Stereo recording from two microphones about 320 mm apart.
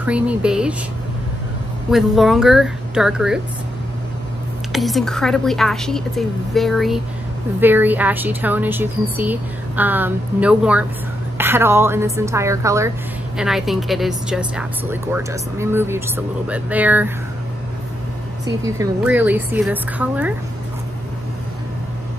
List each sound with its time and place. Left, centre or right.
0.0 s speech: centre
1.9 s speech: centre
4.7 s a woman's voice: centre
18.4 s speech: centre